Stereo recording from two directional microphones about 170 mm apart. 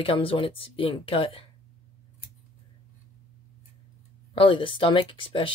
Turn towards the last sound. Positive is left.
turn(degrees=30)  # may be behind; listen again after turning